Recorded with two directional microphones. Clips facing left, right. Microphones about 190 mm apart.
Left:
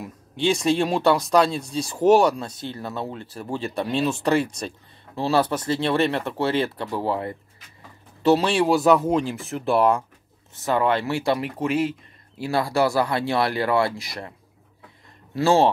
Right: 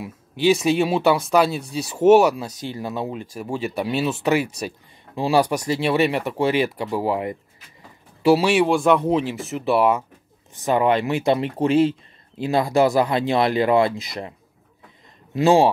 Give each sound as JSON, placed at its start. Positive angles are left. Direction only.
{"t": 0.0, "sound": "speech", "side_deg": -5}
{"t": 8.6, "sound": "speech", "side_deg": 5}
{"t": 10.5, "sound": "speech", "side_deg": -15}
{"t": 15.3, "sound": "speech", "side_deg": -15}